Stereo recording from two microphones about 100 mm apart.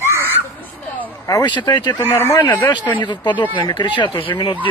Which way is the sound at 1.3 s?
45° left (ahead or behind).